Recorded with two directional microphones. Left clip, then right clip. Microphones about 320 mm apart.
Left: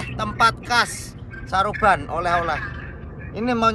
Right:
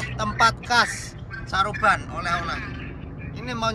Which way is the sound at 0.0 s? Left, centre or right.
Centre.